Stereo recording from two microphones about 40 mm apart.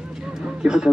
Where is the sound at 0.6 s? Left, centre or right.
Centre.